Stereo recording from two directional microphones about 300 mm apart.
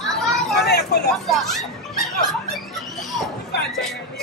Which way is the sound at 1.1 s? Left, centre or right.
Centre.